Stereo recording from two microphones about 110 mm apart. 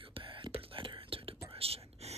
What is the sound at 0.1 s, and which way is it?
Whispering, 45° right (ahead or behind).